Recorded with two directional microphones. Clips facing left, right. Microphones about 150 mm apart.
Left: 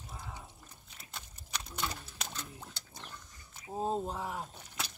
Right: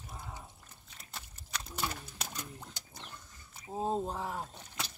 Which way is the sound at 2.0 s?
10° right (ahead or behind).